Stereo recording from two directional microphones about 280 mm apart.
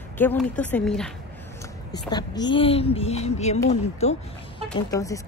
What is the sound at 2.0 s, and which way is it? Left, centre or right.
A woman's voice, centre.